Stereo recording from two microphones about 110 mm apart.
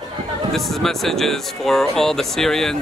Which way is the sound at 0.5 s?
Centre (ahead or behind).